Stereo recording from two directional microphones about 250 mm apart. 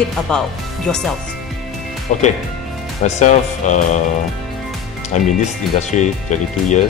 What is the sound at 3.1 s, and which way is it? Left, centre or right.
Speech, left.